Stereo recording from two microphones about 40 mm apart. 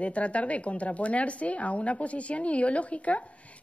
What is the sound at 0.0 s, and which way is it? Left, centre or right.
Speech, left.